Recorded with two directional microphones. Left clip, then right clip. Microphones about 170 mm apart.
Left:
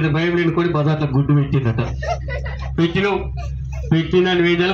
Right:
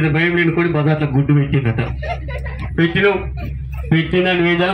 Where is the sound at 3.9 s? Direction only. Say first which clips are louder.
Right 1 dB; 20° left (ahead or behind).